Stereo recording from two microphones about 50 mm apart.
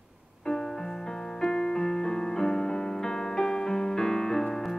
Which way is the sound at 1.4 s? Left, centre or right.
Centre.